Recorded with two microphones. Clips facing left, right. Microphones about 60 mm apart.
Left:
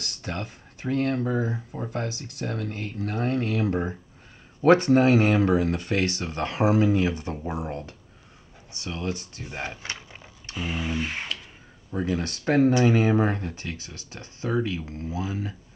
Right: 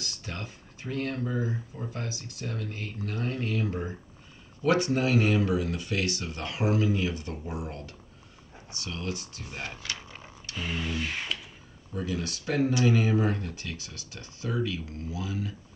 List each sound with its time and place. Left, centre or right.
0.0 s speech: left
4.6 s speech: left
10.5 s speech: centre
10.9 s speech: left
11.9 s speech: left